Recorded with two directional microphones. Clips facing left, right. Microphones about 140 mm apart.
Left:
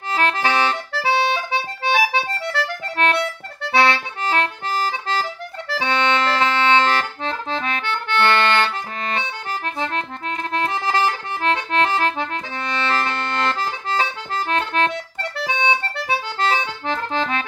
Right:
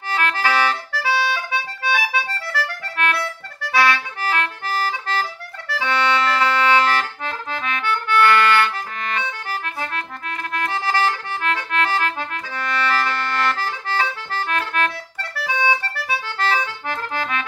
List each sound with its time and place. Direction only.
0.1 s accordion: 25° left (ahead or behind)